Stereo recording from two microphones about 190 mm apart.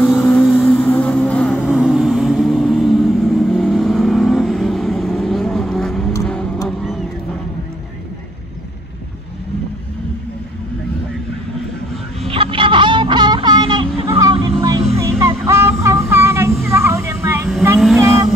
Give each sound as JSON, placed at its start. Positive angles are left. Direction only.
{"t": 0.0, "sound": "music", "side_deg": 5}
{"t": 1.7, "sound": "vehicle", "side_deg": 0}
{"t": 12.2, "sound": "a sound", "side_deg": -30}
{"t": 17.7, "sound": "vehicle", "side_deg": 0}
{"t": 18.0, "sound": "vehicle", "side_deg": -15}